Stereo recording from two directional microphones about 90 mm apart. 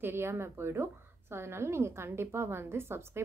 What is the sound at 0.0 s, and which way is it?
A woman's voice, 30° right (ahead or behind).